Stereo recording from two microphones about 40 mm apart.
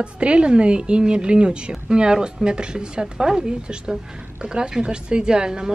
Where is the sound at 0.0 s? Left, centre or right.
Right.